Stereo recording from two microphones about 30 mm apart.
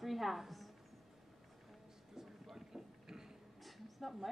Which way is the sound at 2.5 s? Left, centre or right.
Centre.